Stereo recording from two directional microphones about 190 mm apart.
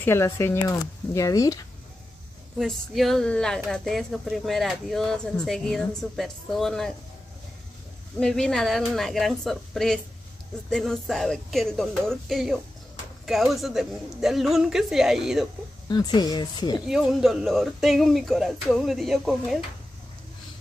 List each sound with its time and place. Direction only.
0.0 s speech: 15° left (ahead or behind)
2.6 s speech: centre (ahead or behind)
8.2 s speech: 5° left (ahead or behind)
15.9 s speech: 20° left (ahead or behind)
16.8 s speech: 5° right (ahead or behind)